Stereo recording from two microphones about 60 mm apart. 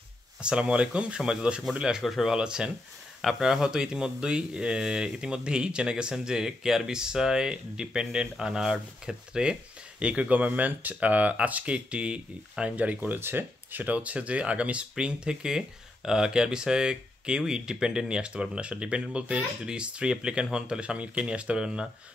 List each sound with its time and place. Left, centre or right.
0.4 s speech: centre
2.3 s speech: centre
13.2 s speech: right; by 21.8 s centre